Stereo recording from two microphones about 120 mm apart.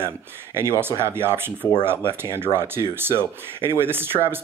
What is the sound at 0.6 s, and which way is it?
Speech, 20° right (ahead or behind).